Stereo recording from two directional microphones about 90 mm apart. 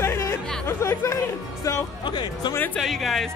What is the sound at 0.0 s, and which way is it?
Music, 30° left (ahead or behind).